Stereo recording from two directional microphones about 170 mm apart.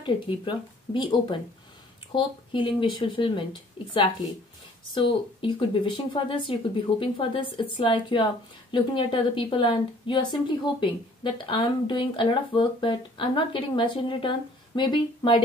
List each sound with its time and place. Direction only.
0.0 s speech: 25° left (ahead or behind)
2.1 s speech: 30° left (ahead or behind)